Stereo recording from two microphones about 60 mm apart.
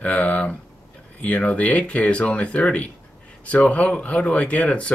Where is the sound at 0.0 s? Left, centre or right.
Left.